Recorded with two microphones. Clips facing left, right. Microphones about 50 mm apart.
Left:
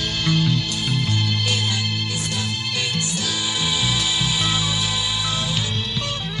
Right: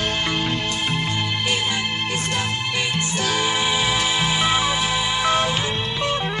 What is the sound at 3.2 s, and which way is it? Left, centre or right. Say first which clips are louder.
Music: right 4 dB; right.